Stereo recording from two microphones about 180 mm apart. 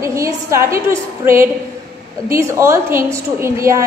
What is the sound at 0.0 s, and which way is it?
A woman's voice, 15° right (ahead or behind).